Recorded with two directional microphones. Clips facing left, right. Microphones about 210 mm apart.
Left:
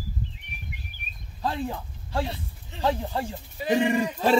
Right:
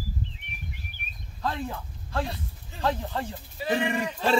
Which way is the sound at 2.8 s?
15° left (ahead or behind).